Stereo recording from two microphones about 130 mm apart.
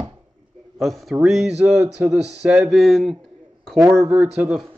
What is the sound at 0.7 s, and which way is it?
Speech, centre (ahead or behind).